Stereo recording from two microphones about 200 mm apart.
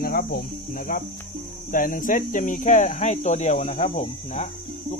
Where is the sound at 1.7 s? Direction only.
40° left (ahead or behind).